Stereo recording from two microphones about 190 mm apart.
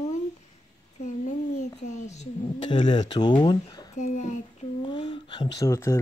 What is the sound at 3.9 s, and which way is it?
Speech, 40° left (ahead or behind).